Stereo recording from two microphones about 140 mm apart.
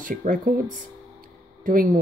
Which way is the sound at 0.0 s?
75° right (ahead or behind).